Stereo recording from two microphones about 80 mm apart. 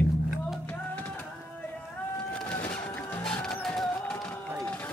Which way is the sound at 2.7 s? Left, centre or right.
Centre.